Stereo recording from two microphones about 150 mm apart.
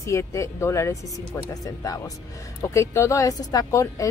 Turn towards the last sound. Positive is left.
turn(degrees=20)  # may be behind; listen again after turning